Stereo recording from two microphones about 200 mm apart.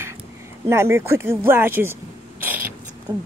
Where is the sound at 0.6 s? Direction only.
10° right (ahead or behind).